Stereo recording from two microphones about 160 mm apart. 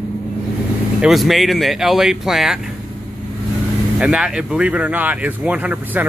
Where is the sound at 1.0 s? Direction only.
Centre (ahead or behind).